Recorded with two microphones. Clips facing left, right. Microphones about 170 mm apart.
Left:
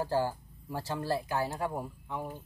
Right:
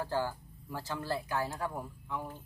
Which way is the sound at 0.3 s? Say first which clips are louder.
Left 3 dB; 20° left (ahead or behind).